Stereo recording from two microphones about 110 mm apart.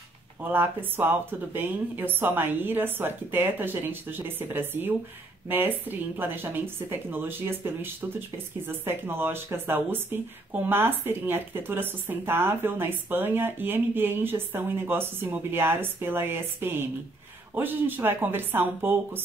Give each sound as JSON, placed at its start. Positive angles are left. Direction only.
{"t": 0.4, "sound": "speech", "side_deg": -20}